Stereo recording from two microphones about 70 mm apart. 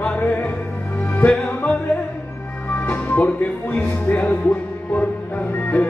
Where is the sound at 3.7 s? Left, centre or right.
Left.